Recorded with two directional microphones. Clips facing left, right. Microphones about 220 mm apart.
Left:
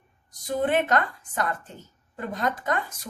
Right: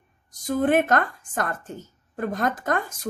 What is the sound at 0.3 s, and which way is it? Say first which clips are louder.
Speech: right 4 dB; 50° right (ahead or behind).